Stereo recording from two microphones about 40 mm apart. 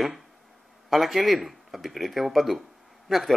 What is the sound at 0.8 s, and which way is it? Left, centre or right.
Speech, centre.